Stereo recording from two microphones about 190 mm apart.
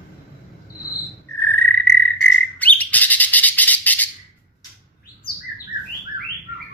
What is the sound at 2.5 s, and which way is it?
Bird, 10° left (ahead or behind).